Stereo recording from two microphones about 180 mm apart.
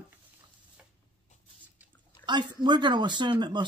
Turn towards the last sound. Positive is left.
turn(degrees=-25)  # may be behind; listen again after turning